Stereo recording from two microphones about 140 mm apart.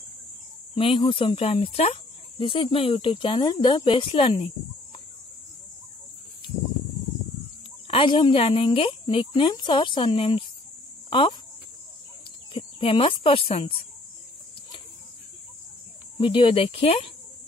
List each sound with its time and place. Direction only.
0.7 s speech: 40° left (ahead or behind)
7.9 s speech: 35° left (ahead or behind)
12.5 s speech: 40° left (ahead or behind)
16.2 s speech: 40° left (ahead or behind)